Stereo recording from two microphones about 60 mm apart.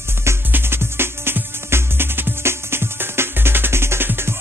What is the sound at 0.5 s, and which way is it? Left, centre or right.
Music, right.